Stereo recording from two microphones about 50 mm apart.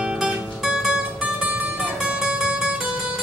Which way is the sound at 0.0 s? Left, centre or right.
Centre.